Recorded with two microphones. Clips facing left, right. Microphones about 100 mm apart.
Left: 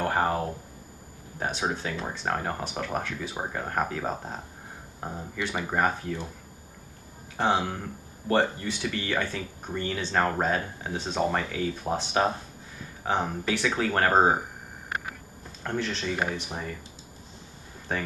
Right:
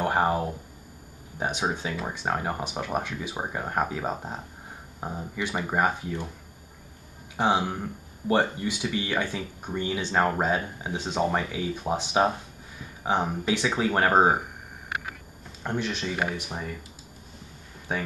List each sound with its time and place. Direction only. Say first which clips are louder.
0.0 s speech: right 2 dB; 15° right (ahead or behind)
7.3 s speech: right 1 dB; 15° right (ahead or behind)
15.6 s speech: right 1 dB; 15° right (ahead or behind)
16.2 s speech: even; 5° right (ahead or behind)
17.9 s speech: even; 10° right (ahead or behind)